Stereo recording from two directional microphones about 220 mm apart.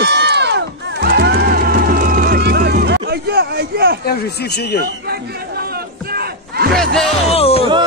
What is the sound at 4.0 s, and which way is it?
Speech, 45° left (ahead or behind).